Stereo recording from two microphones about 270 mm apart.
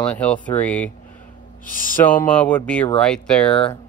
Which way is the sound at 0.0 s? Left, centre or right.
Centre.